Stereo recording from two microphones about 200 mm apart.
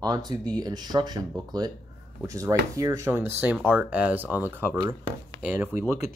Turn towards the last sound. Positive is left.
turn(degrees=-10)  # may be behind; listen again after turning